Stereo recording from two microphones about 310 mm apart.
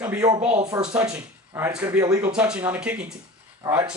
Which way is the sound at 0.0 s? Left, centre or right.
Centre.